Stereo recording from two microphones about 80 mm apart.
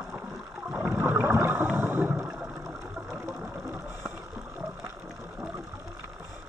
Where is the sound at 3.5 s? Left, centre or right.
Right.